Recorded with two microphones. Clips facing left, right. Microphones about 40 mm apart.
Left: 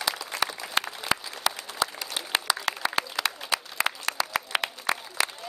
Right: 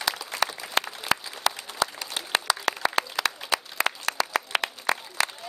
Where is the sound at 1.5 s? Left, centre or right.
Centre.